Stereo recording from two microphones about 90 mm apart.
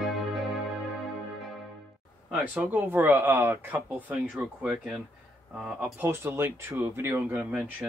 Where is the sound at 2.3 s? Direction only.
20° right (ahead or behind).